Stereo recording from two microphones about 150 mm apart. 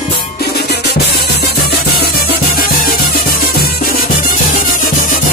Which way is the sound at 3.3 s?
75° left (ahead or behind).